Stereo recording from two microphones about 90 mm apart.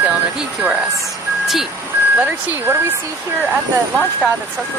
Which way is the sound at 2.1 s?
20° right (ahead or behind).